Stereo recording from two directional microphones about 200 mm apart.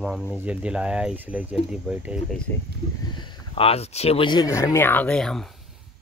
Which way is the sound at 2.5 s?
10° left (ahead or behind).